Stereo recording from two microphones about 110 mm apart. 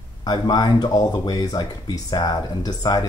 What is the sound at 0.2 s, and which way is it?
Speech, 40° left (ahead or behind).